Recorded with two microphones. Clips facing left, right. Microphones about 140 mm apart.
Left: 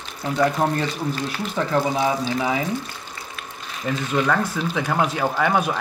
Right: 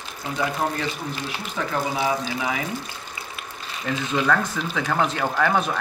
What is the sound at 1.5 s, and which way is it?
Speech, 35° left (ahead or behind).